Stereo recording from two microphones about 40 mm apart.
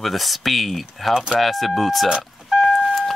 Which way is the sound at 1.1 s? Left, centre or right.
Centre.